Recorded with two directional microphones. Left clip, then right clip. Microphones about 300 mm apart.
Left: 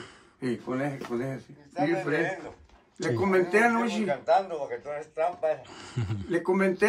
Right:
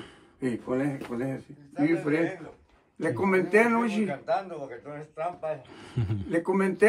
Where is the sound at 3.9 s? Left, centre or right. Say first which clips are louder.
Left 3 dB; left.